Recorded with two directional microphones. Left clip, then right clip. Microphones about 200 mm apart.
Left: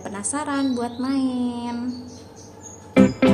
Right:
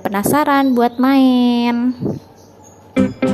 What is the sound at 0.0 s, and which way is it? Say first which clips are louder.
A woman's voice: right 13 dB; 45° right (ahead or behind).